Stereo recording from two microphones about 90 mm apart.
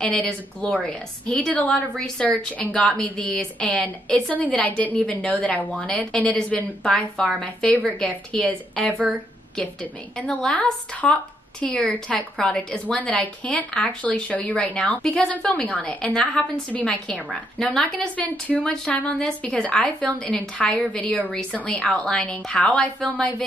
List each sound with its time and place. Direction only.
0.0 s a woman's voice: 10° left (ahead or behind)
8.9 s speech: 20° right (ahead or behind)
10.1 s a woman's voice: 10° left (ahead or behind)